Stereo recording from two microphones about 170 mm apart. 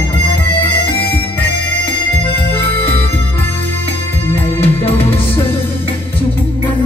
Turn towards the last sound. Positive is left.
turn(degrees=10)  # may be behind; listen again after turning